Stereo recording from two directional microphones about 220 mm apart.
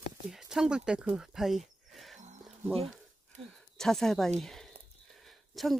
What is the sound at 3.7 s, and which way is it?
A woman's voice, centre (ahead or behind).